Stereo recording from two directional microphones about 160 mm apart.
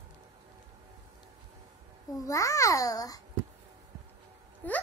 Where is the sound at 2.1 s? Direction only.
20° left (ahead or behind).